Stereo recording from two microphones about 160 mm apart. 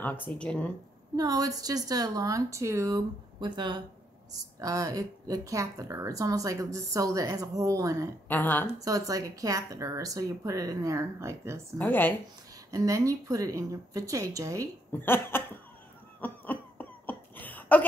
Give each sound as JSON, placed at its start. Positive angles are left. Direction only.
{"t": 0.4, "sound": "a woman's voice", "side_deg": 5}
{"t": 1.1, "sound": "speech", "side_deg": -25}
{"t": 8.3, "sound": "a woman's voice", "side_deg": 10}
{"t": 8.7, "sound": "speech", "side_deg": -20}
{"t": 11.8, "sound": "a woman's voice", "side_deg": 10}
{"t": 12.7, "sound": "speech", "side_deg": -20}
{"t": 14.9, "sound": "a woman's voice", "side_deg": 15}
{"t": 16.2, "sound": "a sound", "side_deg": 10}